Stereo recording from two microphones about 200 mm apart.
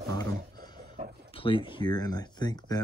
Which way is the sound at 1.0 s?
30° right (ahead or behind).